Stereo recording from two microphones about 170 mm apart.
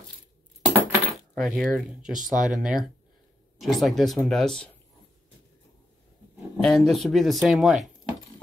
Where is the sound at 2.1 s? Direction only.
50° right (ahead or behind).